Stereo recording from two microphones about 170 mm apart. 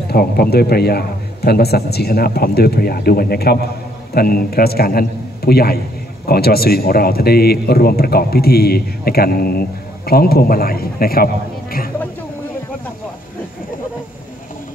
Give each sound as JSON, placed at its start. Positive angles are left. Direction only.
{"t": 0.1, "sound": "a man's voice", "side_deg": 65}